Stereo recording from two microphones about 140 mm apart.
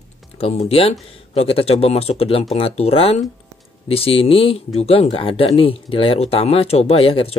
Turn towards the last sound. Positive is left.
turn(degrees=45)  # may be behind; listen again after turning